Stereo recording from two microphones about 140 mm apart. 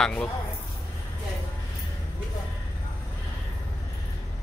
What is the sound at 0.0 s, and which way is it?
Speech, 10° left (ahead or behind).